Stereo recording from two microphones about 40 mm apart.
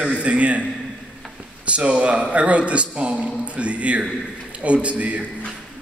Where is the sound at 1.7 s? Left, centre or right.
Right.